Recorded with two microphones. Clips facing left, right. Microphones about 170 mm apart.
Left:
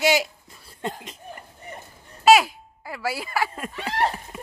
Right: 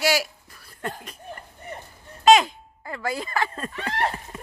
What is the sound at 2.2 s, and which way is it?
Speech, 5° left (ahead or behind).